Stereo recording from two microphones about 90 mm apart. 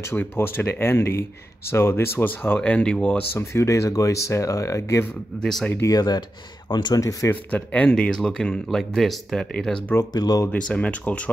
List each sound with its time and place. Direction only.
0.0 s speech: 25° left (ahead or behind)
3.3 s speech: 30° left (ahead or behind)
5.4 s speech: 5° left (ahead or behind)
5.9 s speech: 50° left (ahead or behind)
7.0 s speech: 35° left (ahead or behind)
7.5 s speech: 15° left (ahead or behind)
10.1 s speech: 45° left (ahead or behind)
10.5 s speech: 15° left (ahead or behind)